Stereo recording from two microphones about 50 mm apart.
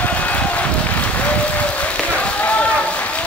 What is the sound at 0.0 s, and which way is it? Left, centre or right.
Applause, left.